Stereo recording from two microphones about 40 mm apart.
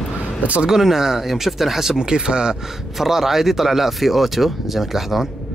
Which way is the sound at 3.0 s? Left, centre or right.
Centre.